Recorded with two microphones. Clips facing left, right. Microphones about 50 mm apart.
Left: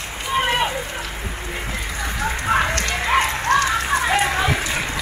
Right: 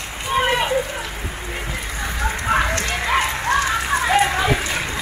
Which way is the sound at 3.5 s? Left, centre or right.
Centre.